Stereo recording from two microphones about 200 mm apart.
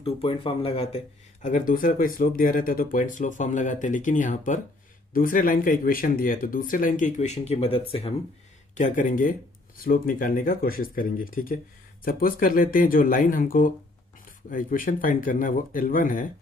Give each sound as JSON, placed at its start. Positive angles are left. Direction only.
{"t": 0.0, "sound": "speech", "side_deg": 25}
{"t": 8.7, "sound": "speech", "side_deg": 40}